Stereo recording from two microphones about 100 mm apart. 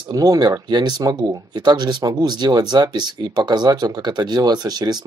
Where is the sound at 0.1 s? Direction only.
40° right (ahead or behind).